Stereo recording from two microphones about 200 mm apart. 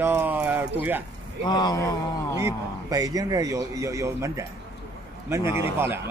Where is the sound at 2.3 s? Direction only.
15° right (ahead or behind).